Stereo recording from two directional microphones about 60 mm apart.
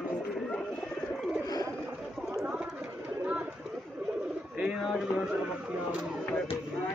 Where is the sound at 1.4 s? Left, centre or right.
Left.